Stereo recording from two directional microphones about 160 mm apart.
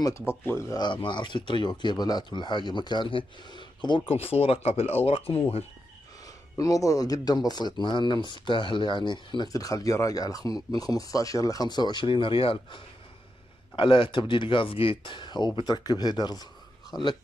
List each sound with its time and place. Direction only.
0.3 s speech: 15° left (ahead or behind); by 5.7 s 40° left (ahead or behind)
6.5 s speech: 20° left (ahead or behind)